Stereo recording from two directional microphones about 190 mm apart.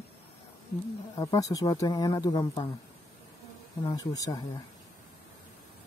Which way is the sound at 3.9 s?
20° left (ahead or behind).